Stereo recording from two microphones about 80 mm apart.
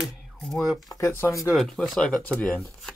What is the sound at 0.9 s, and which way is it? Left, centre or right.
Speech, left.